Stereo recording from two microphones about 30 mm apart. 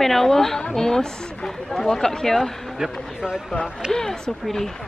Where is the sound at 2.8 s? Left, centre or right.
Right.